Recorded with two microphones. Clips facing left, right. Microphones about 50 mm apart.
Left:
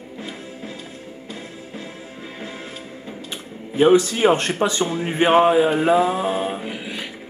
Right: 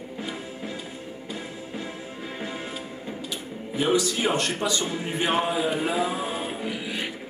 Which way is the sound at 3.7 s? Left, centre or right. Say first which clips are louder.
Left 8 dB; left.